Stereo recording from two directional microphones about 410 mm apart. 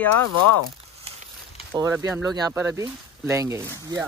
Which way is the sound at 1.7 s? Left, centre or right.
Centre.